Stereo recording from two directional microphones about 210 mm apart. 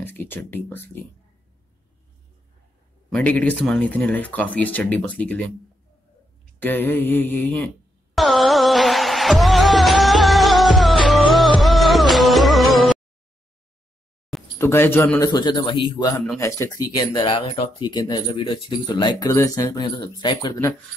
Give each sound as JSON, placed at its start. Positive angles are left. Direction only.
{"t": 0.0, "sound": "speech", "side_deg": 10}
{"t": 3.1, "sound": "speech", "side_deg": 5}
{"t": 6.6, "sound": "a sound", "side_deg": 10}
{"t": 11.3, "sound": "music", "side_deg": 0}
{"t": 14.6, "sound": "speech", "side_deg": 10}